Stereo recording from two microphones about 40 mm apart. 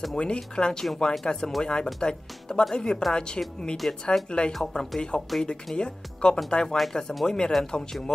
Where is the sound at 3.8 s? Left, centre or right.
Centre.